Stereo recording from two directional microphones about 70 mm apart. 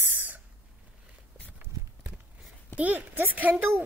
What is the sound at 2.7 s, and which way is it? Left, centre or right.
A woman's voice, right.